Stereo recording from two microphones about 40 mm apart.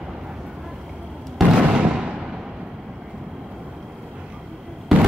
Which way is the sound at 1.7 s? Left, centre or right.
Right.